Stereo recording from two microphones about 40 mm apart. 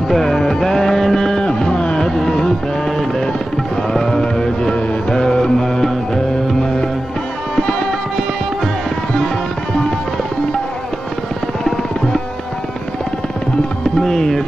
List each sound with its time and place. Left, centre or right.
0.1 s music: centre
3.9 s music: centre
11.6 s music: centre
13.9 s tabla: centre